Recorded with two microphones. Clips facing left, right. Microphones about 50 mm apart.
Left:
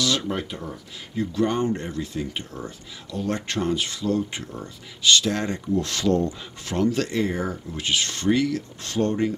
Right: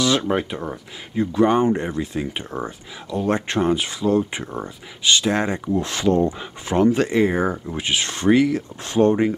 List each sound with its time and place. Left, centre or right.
0.3 s speech: right